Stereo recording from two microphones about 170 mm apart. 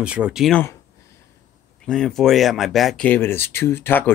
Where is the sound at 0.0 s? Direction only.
5° right (ahead or behind).